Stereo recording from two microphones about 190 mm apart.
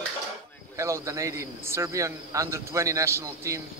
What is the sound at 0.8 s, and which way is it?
A man's voice, 15° right (ahead or behind).